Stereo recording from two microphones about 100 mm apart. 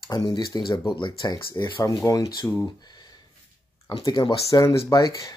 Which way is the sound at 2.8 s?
45° left (ahead or behind).